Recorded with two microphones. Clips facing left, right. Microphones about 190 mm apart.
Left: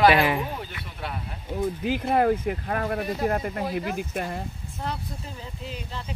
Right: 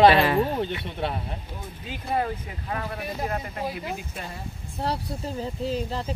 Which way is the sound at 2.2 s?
55° left (ahead or behind).